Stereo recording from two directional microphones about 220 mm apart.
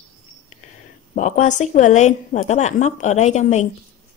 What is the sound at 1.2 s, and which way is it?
A woman's voice, 35° left (ahead or behind).